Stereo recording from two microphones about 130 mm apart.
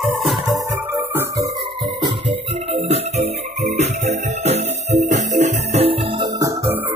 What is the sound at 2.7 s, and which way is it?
Music, 55° right (ahead or behind).